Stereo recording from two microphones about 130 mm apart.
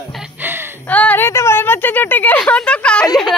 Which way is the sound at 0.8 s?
10° left (ahead or behind).